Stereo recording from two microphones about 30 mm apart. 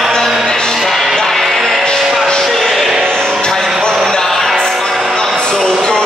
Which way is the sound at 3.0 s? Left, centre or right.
Left.